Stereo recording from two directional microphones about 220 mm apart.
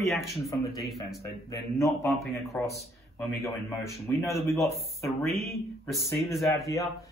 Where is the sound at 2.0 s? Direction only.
Centre (ahead or behind).